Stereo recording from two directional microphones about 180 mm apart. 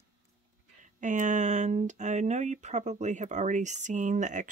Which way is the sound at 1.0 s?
45° right (ahead or behind).